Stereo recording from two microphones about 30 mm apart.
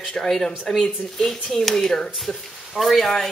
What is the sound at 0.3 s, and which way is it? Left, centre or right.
Speech, centre.